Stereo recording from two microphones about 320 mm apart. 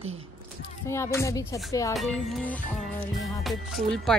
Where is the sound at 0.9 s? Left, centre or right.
Centre.